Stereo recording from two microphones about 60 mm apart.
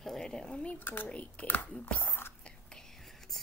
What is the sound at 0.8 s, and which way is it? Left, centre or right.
Speech, left.